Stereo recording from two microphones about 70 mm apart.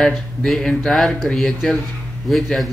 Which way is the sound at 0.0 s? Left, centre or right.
Centre.